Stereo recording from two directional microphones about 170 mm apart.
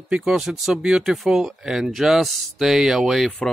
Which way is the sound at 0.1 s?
5° right (ahead or behind).